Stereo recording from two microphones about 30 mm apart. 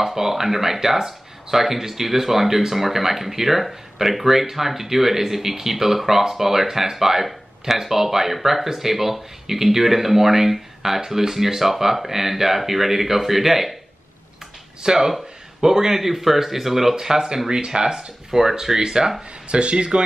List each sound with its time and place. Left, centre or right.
0.0 s speech: centre
14.8 s speech: right
16.0 s speech: centre; by 18.1 s right
18.3 s speech: centre
19.5 s speech: right